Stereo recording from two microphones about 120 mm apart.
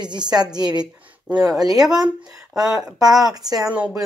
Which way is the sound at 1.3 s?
10° right (ahead or behind).